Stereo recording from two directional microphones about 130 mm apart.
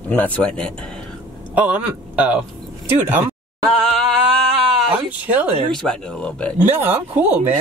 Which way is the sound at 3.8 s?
5° left (ahead or behind).